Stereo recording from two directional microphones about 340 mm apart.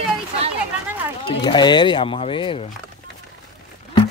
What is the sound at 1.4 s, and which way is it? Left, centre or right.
Speech, centre.